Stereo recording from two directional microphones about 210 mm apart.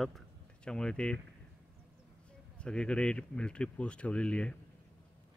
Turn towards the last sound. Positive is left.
turn(degrees=5)  # may be behind; listen again after turning